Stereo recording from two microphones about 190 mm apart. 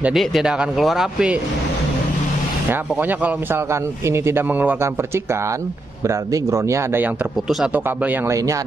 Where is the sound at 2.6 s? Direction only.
10° right (ahead or behind).